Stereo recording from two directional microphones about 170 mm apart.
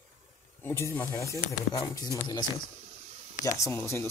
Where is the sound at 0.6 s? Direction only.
15° left (ahead or behind).